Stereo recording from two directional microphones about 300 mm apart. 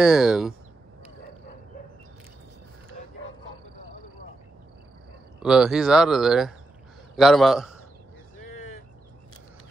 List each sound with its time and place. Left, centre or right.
0.0 s speech: centre
5.4 s speech: centre